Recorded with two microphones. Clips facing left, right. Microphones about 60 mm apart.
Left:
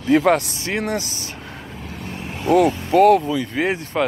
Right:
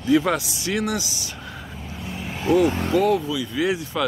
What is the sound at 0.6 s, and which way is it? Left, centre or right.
Speech, left.